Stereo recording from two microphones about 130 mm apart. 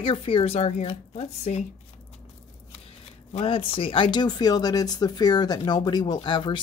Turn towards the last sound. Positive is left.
turn(degrees=40)  # may be behind; listen again after turning